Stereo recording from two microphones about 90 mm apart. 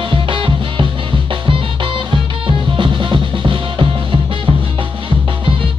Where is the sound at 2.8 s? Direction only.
65° right (ahead or behind).